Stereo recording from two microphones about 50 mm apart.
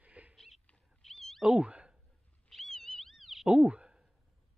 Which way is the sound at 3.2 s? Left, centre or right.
Centre.